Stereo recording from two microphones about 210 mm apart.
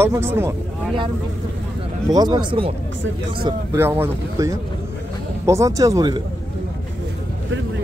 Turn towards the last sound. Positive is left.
turn(degrees=-20)  # may be behind; listen again after turning